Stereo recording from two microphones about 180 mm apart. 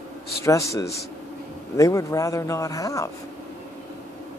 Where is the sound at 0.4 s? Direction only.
15° left (ahead or behind).